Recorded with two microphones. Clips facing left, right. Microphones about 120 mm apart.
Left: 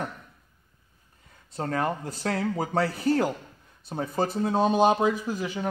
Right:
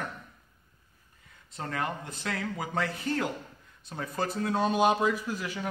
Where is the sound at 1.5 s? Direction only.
35° left (ahead or behind).